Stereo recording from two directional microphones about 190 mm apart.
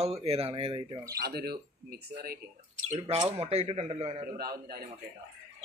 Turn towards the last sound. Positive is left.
turn(degrees=-55)  # may be behind; listen again after turning